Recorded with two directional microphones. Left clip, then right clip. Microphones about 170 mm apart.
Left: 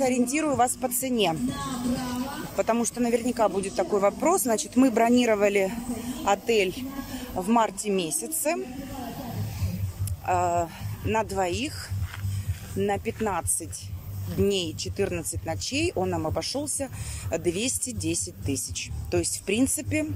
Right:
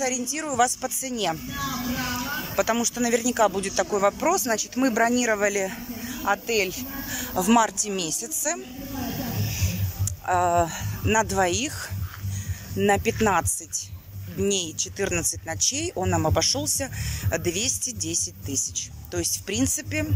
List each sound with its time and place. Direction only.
0.0 s speech: 20° left (ahead or behind)
2.5 s speech: 10° left (ahead or behind)
7.3 s speech: 5° left (ahead or behind)
10.2 s speech: 5° left (ahead or behind)
12.7 s speech: centre (ahead or behind); by 20.1 s 15° left (ahead or behind)